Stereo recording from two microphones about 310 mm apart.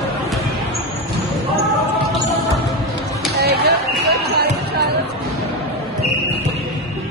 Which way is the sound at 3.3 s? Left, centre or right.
Right.